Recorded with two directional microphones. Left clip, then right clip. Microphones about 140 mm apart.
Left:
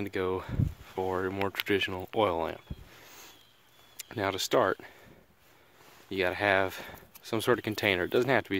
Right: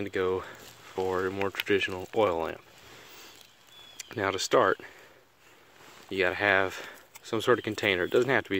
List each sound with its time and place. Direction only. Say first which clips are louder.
0.0 s speech: right 3 dB; 40° left (ahead or behind)
3.9 s speech: right 2 dB; 25° left (ahead or behind)
6.0 s speech: right 2 dB; 35° left (ahead or behind)